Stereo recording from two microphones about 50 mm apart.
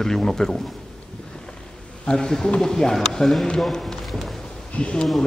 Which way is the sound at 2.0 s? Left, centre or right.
Centre.